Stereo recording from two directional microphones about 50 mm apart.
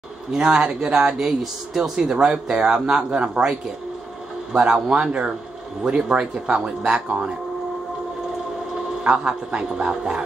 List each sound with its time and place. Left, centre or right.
0.3 s speech: centre
9.0 s speech: centre